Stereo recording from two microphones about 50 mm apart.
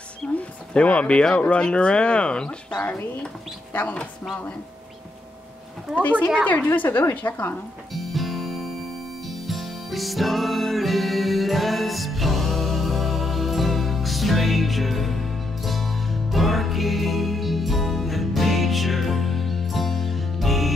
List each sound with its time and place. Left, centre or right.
0.4 s speech: left
5.9 s speech: centre
6.4 s a woman's voice: left
7.9 s music: centre